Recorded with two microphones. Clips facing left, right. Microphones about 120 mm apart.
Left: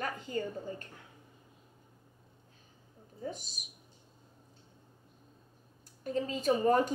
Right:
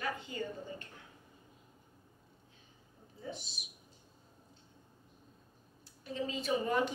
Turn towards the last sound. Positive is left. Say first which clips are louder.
# left 5 dB
turn(degrees=40)  # may be behind; listen again after turning